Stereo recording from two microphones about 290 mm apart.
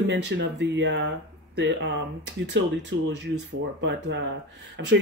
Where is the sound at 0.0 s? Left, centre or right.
Right.